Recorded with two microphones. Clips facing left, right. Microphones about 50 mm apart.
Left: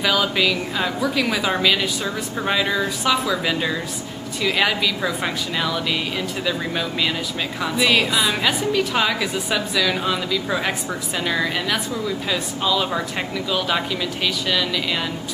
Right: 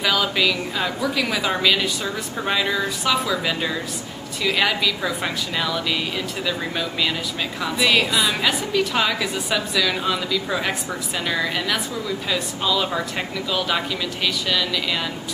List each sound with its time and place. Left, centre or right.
0.0 s a woman's voice: centre